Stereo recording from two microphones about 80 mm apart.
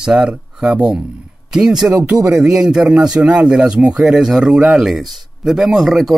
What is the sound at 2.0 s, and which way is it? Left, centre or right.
Speech, centre.